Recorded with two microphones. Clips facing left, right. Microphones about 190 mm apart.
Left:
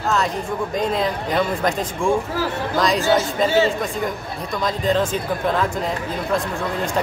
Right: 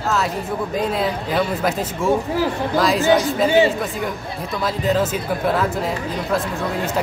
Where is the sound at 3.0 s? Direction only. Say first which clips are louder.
Right 3 dB; 15° right (ahead or behind).